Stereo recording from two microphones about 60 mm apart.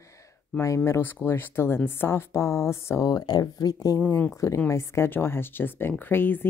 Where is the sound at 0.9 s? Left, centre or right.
Left.